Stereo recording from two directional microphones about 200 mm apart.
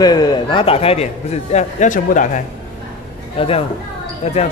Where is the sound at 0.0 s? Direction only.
20° left (ahead or behind).